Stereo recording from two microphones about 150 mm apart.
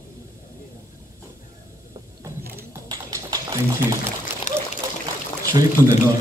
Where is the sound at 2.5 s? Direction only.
25° right (ahead or behind).